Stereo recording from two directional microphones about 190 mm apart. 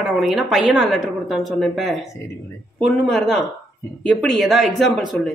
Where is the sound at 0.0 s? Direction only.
Centre (ahead or behind).